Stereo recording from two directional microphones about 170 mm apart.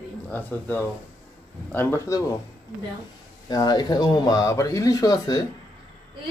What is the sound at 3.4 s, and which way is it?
Speech, 25° left (ahead or behind).